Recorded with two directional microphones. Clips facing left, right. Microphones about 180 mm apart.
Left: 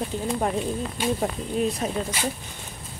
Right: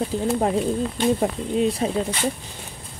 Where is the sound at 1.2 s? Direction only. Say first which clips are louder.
Right 4 dB; 30° right (ahead or behind).